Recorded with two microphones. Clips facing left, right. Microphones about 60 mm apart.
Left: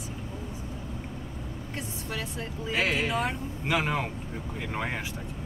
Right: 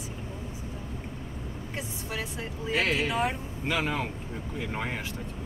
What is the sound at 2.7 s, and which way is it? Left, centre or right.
Speech, centre.